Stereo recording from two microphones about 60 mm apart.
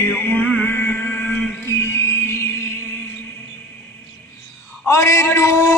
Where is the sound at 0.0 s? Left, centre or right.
Left.